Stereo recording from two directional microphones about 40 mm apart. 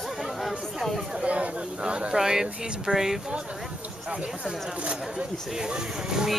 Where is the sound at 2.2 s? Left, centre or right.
Centre.